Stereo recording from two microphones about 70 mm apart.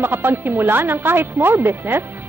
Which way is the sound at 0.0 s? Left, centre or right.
Right.